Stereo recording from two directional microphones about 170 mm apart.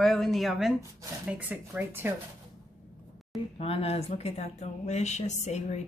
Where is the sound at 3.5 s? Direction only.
35° left (ahead or behind).